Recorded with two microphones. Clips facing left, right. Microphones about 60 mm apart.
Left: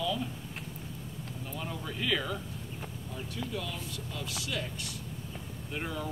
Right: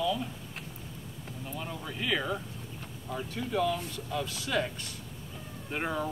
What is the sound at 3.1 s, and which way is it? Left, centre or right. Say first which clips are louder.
Speech: right 6 dB; right.